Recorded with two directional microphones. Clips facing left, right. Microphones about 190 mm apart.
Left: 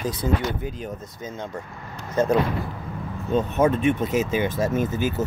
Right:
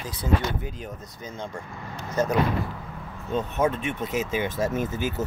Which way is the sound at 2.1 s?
25° left (ahead or behind).